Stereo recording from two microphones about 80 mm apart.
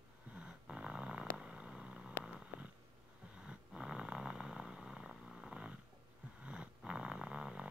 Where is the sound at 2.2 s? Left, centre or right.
Centre.